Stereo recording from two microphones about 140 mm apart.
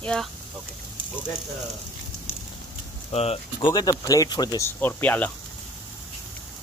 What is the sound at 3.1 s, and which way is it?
Speech, 50° left (ahead or behind).